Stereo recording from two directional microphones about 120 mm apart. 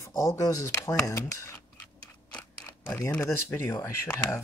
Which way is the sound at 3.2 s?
20° left (ahead or behind).